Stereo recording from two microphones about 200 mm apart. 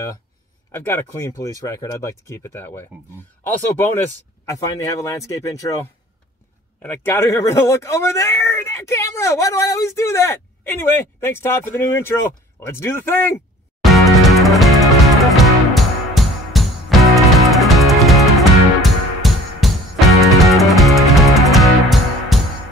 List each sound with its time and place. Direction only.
0.7 s speech: 10° left (ahead or behind)
6.8 s speech: 10° left (ahead or behind)
13.9 s music: centre (ahead or behind)